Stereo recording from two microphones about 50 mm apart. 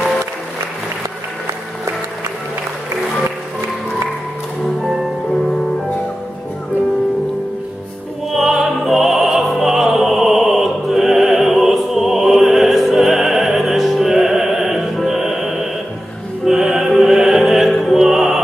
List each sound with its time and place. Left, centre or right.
8.3 s music: centre